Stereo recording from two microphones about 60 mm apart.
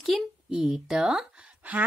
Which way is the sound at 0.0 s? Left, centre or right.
Centre.